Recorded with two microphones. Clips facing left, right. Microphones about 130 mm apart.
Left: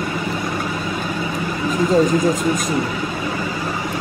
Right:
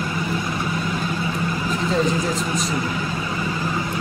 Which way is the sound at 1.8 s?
45° left (ahead or behind).